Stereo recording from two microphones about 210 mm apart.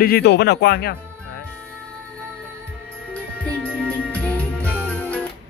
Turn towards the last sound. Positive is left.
turn(degrees=5)  # may be behind; listen again after turning